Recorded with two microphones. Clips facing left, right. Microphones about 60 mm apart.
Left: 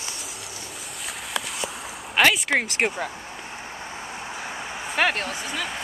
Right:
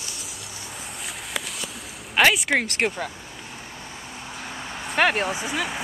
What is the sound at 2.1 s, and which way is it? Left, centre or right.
Speech, centre.